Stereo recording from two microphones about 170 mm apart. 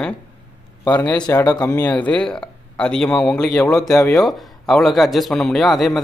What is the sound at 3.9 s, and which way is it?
Speech, 20° left (ahead or behind).